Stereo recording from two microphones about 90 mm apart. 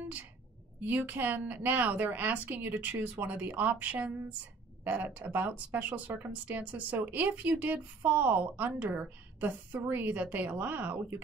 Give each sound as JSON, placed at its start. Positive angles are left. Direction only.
{"t": 0.8, "sound": "speech", "side_deg": -20}